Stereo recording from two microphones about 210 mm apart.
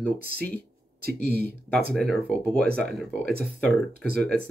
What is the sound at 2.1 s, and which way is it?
Speech, 5° left (ahead or behind).